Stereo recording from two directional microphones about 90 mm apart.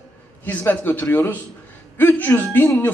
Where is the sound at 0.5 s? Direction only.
20° left (ahead or behind).